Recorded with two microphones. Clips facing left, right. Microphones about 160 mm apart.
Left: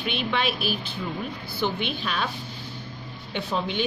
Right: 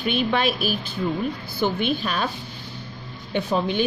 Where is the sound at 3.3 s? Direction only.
45° right (ahead or behind).